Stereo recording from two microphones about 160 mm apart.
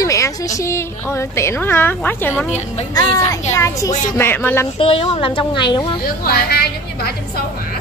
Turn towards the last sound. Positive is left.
turn(degrees=85)